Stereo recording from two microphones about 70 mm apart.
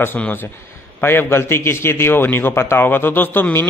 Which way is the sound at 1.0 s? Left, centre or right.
Left.